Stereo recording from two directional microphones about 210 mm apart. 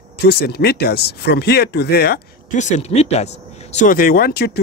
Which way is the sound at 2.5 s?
35° left (ahead or behind).